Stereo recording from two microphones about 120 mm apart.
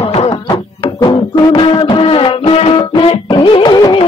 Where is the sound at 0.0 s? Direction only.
50° left (ahead or behind).